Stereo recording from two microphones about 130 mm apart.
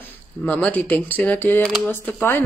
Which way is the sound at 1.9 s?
15° left (ahead or behind).